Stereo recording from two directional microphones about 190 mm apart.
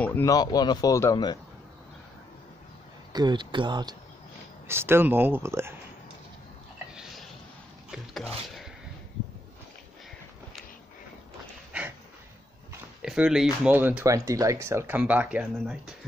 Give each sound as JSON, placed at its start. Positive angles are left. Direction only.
{"t": 0.0, "sound": "speech", "side_deg": 10}
{"t": 3.1, "sound": "speech", "side_deg": -20}
{"t": 4.6, "sound": "speech", "side_deg": -10}
{"t": 6.9, "sound": "a sound", "side_deg": 0}
{"t": 7.9, "sound": "speech", "side_deg": 0}
{"t": 13.0, "sound": "speech", "side_deg": -5}